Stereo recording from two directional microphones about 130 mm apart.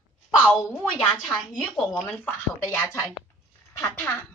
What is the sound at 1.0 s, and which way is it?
Speech, 5° right (ahead or behind).